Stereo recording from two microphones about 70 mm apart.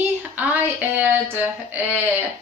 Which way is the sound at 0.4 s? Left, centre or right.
Right.